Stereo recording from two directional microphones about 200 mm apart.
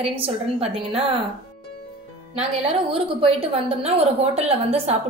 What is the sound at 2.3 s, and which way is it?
A woman's voice, 30° right (ahead or behind).